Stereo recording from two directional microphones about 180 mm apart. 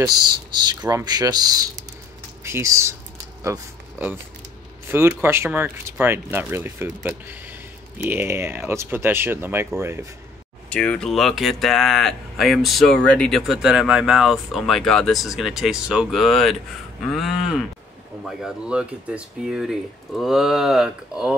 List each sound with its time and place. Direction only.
0.0 s speech: 25° right (ahead or behind)
10.7 s speech: 5° left (ahead or behind)